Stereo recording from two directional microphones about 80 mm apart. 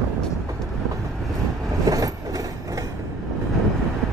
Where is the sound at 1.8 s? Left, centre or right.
Right.